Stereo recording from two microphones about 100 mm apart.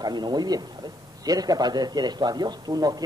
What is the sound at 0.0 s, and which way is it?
A woman's voice, 45° right (ahead or behind).